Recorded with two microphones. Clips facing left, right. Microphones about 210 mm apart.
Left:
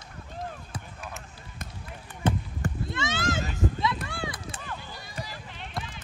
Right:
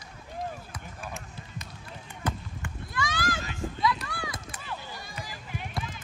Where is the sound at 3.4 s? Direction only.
40° left (ahead or behind).